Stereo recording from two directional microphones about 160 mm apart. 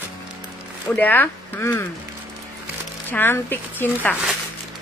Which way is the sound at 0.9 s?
10° left (ahead or behind).